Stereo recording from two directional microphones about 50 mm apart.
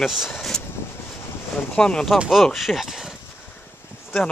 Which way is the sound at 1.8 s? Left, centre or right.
Centre.